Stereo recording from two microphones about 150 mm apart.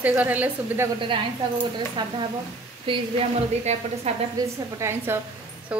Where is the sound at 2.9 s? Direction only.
35° right (ahead or behind).